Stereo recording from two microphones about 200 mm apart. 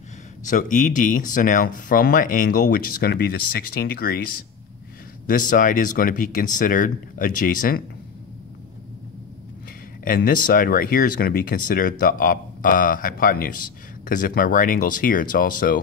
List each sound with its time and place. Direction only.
0.5 s speech: 40° left (ahead or behind)
5.2 s speech: 40° left (ahead or behind)
10.0 s speech: 45° left (ahead or behind)